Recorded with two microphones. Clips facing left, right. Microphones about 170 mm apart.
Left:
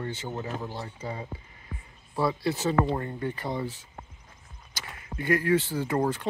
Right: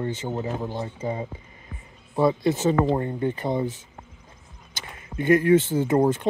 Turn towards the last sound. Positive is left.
turn(degrees=-20)  # may be behind; listen again after turning